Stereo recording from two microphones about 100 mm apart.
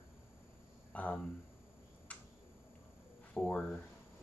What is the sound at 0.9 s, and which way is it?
Speech, 15° left (ahead or behind).